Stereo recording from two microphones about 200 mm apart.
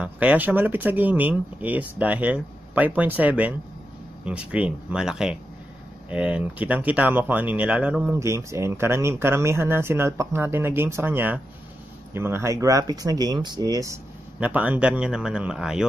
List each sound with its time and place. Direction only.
0.0 s a man's voice: 5° right (ahead or behind)